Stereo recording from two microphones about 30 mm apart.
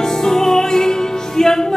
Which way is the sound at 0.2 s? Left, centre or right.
Centre.